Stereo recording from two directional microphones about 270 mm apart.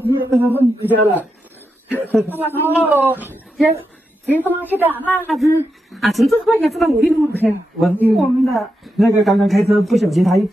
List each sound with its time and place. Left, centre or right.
0.0 s a sound: centre
0.3 s a man's voice: centre
5.0 s a woman's voice: centre